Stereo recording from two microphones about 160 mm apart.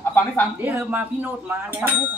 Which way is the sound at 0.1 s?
10° left (ahead or behind).